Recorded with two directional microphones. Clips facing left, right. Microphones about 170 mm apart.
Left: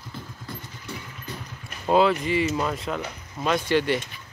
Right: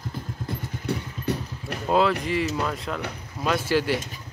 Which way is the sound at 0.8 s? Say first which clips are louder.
Right 9 dB; 70° right (ahead or behind).